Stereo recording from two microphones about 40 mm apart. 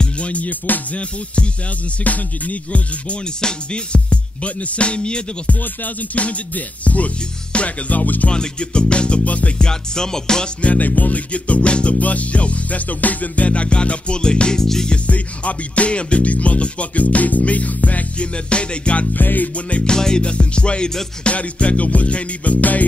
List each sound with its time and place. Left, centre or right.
0.0 s music: left
0.9 s music: left
3.3 s music: left
8.3 s music: left
9.6 s music: centre
10.6 s music: left; by 14.9 s centre
15.0 s music: left
19.1 s music: left
19.8 s music: centre; by 22.8 s left